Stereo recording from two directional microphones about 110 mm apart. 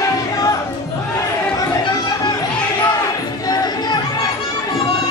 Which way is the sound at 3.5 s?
40° left (ahead or behind).